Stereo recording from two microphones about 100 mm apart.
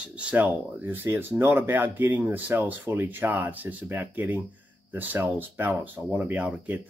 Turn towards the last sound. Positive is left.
turn(degrees=-15)  # may be behind; listen again after turning